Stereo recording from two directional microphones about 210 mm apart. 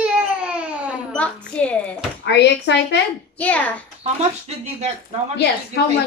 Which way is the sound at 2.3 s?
55° left (ahead or behind).